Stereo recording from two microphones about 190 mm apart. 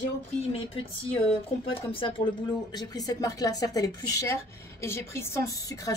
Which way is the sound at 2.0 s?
25° left (ahead or behind).